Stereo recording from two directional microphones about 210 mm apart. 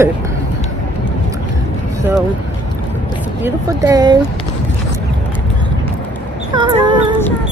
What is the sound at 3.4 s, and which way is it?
Speech, 15° right (ahead or behind).